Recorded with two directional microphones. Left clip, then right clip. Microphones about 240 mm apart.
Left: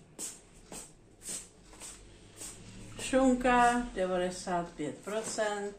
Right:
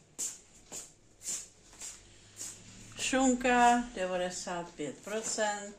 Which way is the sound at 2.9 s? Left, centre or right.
Right.